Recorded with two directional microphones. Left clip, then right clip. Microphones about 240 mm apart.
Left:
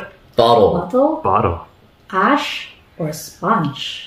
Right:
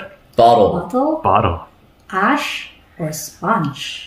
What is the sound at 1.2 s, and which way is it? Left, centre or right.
Speech, right.